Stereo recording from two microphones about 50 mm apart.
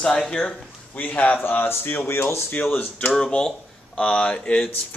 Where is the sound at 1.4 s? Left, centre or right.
Left.